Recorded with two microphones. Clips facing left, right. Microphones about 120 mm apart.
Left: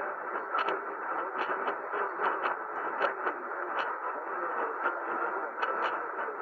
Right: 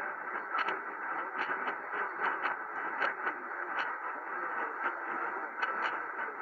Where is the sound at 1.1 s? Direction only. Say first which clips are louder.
Left 4 dB; 20° left (ahead or behind).